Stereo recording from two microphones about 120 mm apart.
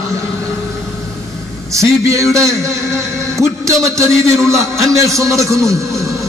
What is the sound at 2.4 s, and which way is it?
Speech, 5° left (ahead or behind).